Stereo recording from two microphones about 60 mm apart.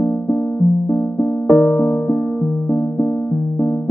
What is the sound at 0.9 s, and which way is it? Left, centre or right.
Keyboard, left.